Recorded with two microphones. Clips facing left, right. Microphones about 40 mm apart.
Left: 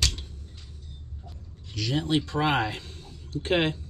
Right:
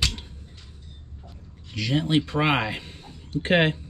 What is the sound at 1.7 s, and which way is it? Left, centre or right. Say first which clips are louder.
A man's voice: right 3 dB; centre.